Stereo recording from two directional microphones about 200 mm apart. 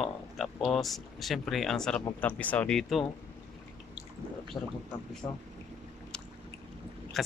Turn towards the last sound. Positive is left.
turn(degrees=0)  # may be behind; listen again after turning